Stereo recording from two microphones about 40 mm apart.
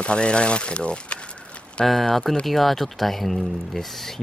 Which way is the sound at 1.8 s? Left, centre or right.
Centre.